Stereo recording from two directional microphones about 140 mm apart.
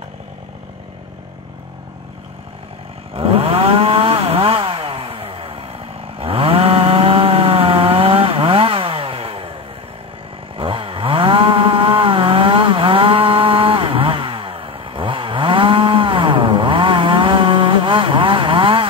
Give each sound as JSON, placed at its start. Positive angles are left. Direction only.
{"t": 3.2, "sound": "chainsaw", "side_deg": -40}
{"t": 10.6, "sound": "chainsaw", "side_deg": -40}